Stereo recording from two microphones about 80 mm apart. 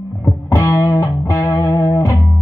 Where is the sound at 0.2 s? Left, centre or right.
Left.